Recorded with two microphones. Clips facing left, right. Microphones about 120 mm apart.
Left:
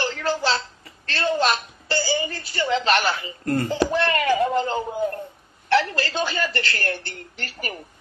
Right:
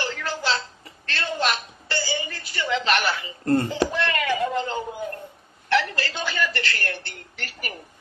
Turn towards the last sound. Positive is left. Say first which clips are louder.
# left 3 dB
turn(degrees=35)  # may be behind; listen again after turning